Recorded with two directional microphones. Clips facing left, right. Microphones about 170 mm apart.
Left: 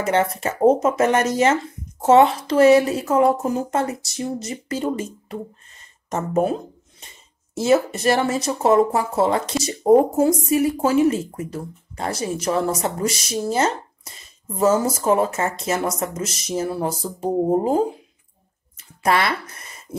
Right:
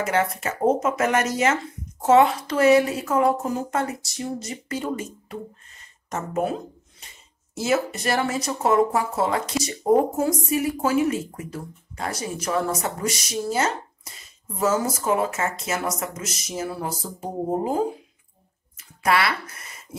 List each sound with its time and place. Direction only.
0.0 s speech: 30° left (ahead or behind)
6.0 s speech: 30° left (ahead or behind)
7.6 s speech: 30° left (ahead or behind)
19.0 s speech: 40° left (ahead or behind)